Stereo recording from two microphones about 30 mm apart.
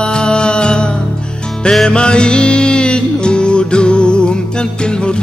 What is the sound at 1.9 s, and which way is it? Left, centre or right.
Music, left.